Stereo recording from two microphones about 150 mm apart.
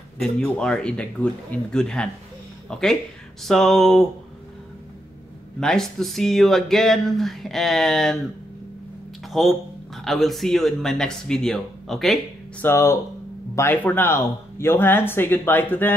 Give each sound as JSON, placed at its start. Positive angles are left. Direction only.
{"t": 0.2, "sound": "speech", "side_deg": 5}
{"t": 5.6, "sound": "speech", "side_deg": 5}
{"t": 9.3, "sound": "speech", "side_deg": 0}
{"t": 12.6, "sound": "speech", "side_deg": 20}